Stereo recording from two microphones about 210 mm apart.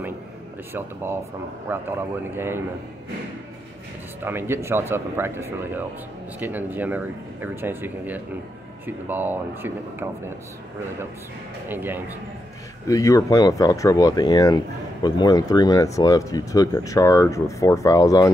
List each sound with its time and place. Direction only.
0.7 s speech: 10° right (ahead or behind)
4.2 s speech: 10° right (ahead or behind)
11.7 s speech: 10° right (ahead or behind)
12.8 s speech: 15° left (ahead or behind)